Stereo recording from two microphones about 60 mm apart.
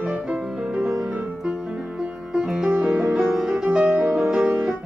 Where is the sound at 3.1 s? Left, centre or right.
Centre.